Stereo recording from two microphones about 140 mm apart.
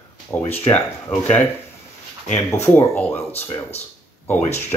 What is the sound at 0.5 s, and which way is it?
Speech, 15° left (ahead or behind).